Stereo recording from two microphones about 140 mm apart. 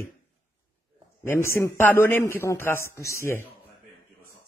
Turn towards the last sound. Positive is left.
turn(degrees=20)  # may be behind; listen again after turning